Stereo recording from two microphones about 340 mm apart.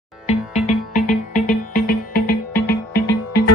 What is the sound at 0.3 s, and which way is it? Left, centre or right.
Music, left.